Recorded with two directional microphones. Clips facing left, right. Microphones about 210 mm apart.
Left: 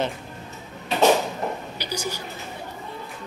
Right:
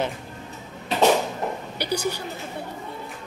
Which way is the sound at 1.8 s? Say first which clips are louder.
Right 4 dB; 60° right (ahead or behind).